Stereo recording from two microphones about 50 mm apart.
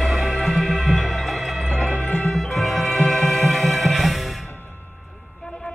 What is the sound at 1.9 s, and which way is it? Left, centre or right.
Music, left.